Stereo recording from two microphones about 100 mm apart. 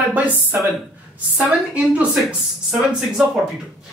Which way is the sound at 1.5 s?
10° right (ahead or behind).